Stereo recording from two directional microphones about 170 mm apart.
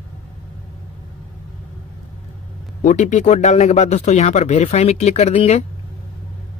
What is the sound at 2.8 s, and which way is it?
Speech, 45° left (ahead or behind).